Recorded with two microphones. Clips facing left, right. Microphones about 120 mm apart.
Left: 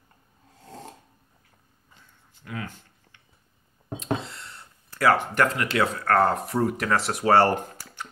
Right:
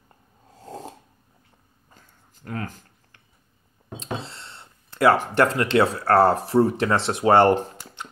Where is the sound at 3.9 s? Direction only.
30° right (ahead or behind).